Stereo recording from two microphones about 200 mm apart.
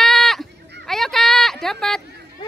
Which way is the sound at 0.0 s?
Centre (ahead or behind).